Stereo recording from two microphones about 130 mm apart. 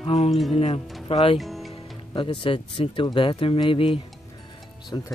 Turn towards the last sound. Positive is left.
turn(degrees=30)  # may be behind; listen again after turning